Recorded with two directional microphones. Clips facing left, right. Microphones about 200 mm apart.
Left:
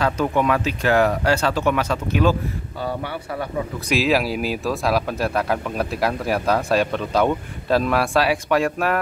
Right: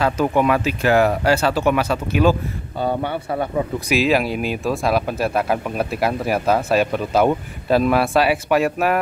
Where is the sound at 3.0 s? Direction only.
25° right (ahead or behind).